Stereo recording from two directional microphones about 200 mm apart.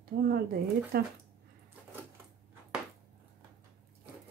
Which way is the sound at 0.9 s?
50° right (ahead or behind).